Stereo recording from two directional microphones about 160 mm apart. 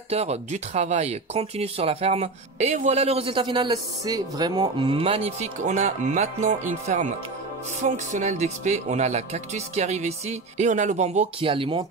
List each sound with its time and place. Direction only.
0.1 s speech: 40° right (ahead or behind)